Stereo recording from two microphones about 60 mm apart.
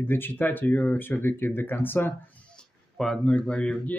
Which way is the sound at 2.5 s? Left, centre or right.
Centre.